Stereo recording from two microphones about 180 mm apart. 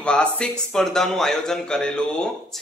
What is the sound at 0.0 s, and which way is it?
A man's voice, 5° left (ahead or behind).